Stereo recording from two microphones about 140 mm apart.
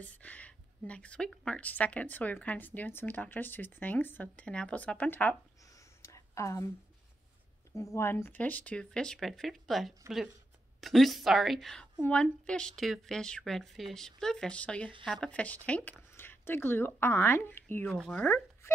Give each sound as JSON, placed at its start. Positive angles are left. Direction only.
{"t": 0.0, "sound": "a woman's voice", "side_deg": 10}
{"t": 6.0, "sound": "a sound", "side_deg": 20}
{"t": 7.9, "sound": "a woman's voice", "side_deg": 15}
{"t": 17.8, "sound": "speech", "side_deg": 5}